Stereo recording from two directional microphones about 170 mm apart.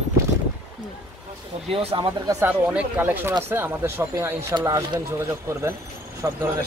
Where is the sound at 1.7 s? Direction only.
35° right (ahead or behind).